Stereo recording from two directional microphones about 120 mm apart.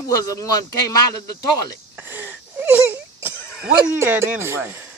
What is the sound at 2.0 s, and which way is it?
Wheeze, 15° right (ahead or behind).